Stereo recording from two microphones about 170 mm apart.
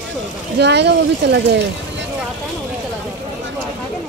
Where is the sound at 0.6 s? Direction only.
85° right.